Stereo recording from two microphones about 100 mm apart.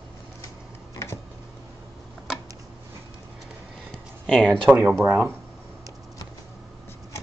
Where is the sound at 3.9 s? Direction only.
5° left (ahead or behind).